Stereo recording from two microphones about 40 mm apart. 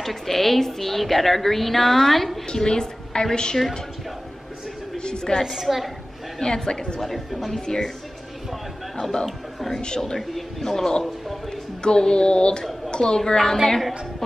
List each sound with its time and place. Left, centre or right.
0.0 s a woman's voice: centre
2.4 s a woman's voice: centre
4.9 s a sound: left
5.4 s a woman's voice: centre
6.4 s a woman's voice: centre
7.0 s a woman's voice: centre
7.6 s a man's voice: centre
9.2 s a man's voice: centre
9.8 s a woman's voice: centre
10.1 s a man's voice: centre